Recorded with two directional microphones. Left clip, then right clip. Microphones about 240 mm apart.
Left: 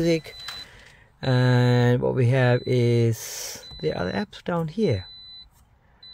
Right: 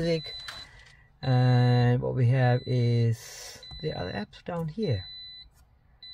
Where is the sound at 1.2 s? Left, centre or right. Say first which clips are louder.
Left 5 dB; left.